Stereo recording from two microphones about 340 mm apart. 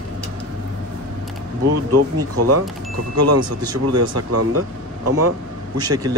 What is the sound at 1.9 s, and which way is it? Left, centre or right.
Speech, right.